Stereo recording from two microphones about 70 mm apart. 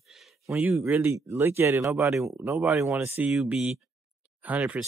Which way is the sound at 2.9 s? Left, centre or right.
Right.